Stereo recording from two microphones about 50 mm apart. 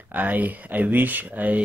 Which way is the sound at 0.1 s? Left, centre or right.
Right.